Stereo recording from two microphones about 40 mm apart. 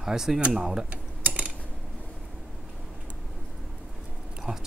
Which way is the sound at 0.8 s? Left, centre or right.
Right.